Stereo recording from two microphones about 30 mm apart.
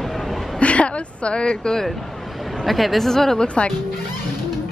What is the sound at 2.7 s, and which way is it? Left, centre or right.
Speech, centre.